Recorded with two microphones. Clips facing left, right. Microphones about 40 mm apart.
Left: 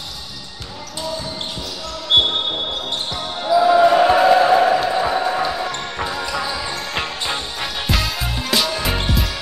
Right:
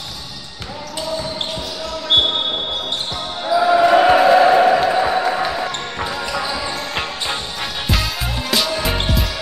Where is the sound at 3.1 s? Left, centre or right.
Centre.